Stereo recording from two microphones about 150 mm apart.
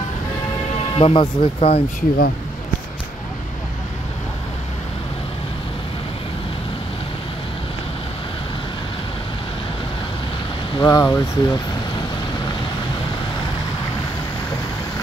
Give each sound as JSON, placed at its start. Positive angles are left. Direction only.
{"t": 0.9, "sound": "speech", "side_deg": 35}
{"t": 2.0, "sound": "speech", "side_deg": 90}
{"t": 10.8, "sound": "speech", "side_deg": 25}